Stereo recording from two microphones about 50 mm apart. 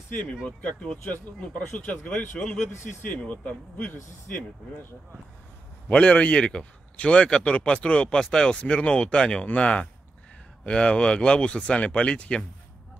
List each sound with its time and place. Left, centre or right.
0.1 s a man's voice: left
5.9 s a man's voice: left